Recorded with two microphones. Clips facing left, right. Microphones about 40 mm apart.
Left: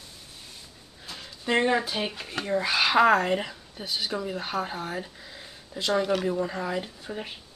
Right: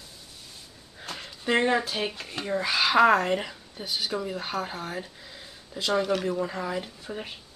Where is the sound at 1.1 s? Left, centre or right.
Right.